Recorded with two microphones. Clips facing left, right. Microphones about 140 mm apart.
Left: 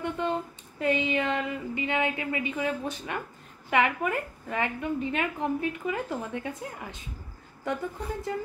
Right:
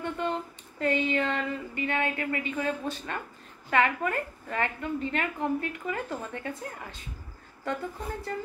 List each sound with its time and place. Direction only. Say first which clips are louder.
0.0 s a sound: left 2 dB; 15° left (ahead or behind)
3.7 s a woman's voice: even; 15° left (ahead or behind)
8.3 s a woman's voice: left 1 dB; 15° left (ahead or behind)